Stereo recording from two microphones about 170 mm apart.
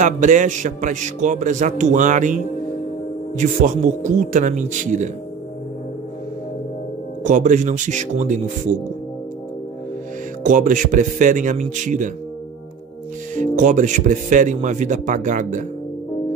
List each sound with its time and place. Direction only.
0.0 s speech: 50° right (ahead or behind)
7.2 s speech: 45° right (ahead or behind)
10.4 s speech: 50° right (ahead or behind)
13.4 s speech: 45° right (ahead or behind)